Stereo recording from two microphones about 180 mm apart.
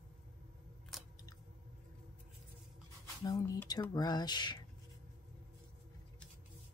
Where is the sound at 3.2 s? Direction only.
20° left (ahead or behind).